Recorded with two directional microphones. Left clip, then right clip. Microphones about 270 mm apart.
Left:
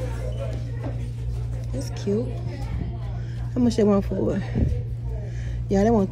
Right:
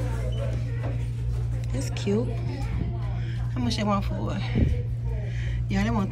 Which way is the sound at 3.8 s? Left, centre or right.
Left.